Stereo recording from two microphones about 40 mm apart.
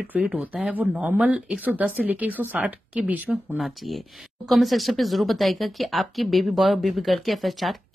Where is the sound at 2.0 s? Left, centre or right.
Right.